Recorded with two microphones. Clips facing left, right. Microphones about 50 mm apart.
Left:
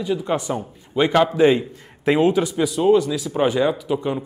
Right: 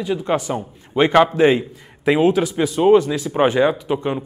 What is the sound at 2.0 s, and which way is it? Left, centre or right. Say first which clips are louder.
Speech: right 1 dB; centre.